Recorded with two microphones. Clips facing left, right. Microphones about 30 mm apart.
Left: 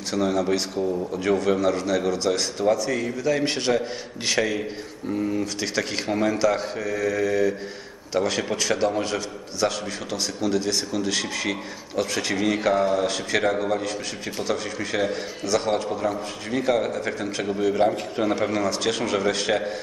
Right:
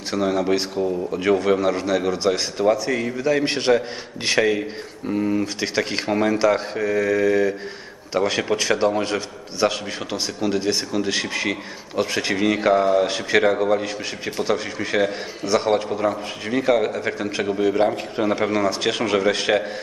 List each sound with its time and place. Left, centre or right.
0.1 s a man's voice: centre